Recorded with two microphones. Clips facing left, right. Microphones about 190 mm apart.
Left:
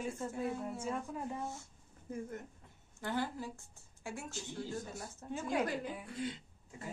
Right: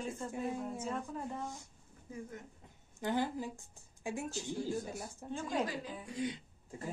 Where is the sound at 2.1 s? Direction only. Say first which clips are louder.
Left 3 dB; 50° left (ahead or behind).